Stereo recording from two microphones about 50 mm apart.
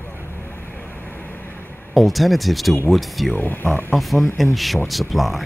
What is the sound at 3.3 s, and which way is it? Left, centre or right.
Speech, left.